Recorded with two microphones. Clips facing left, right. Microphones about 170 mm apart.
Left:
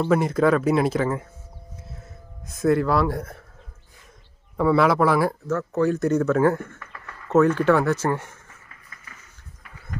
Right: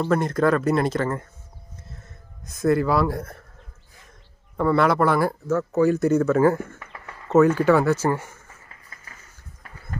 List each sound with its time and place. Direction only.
0.0 s speech: 5° left (ahead or behind)
2.4 s speech: 5° left (ahead or behind)
4.6 s speech: centre (ahead or behind)
6.8 s a sound: 20° right (ahead or behind)
7.3 s speech: 5° right (ahead or behind)